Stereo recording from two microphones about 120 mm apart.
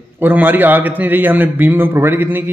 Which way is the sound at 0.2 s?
15° right (ahead or behind).